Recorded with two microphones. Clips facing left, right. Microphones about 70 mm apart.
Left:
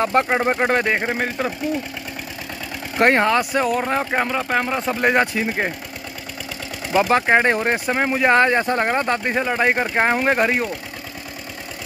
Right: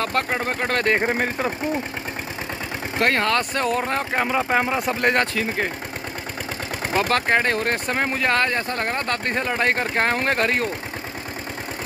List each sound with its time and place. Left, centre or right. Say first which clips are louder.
0.0 s speech: left 5 dB; left
0.9 s speech: even; centre
3.0 s speech: left 5 dB; left
3.3 s speech: left 3 dB; centre
4.3 s speech: even; centre
5.0 s speech: left 4 dB; centre
7.0 s speech: left 5 dB; centre